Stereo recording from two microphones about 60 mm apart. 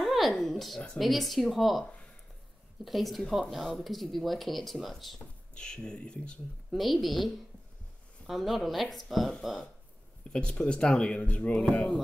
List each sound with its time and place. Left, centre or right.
0.0 s a sound: centre
0.9 s speech: centre
5.5 s speech: centre
6.7 s speech: centre
10.4 s speech: left
11.6 s speech: centre